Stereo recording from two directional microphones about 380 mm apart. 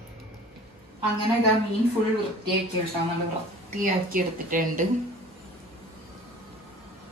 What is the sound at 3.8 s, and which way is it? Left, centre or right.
Speech, right.